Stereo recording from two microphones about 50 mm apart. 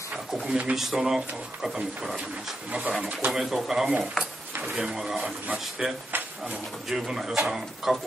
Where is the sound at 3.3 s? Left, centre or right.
Centre.